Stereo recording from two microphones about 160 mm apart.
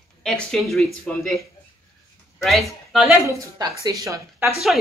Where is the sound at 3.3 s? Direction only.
20° right (ahead or behind).